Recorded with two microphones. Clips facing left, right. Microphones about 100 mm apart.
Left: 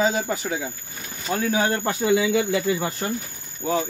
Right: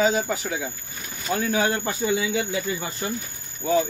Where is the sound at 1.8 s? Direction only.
80° left.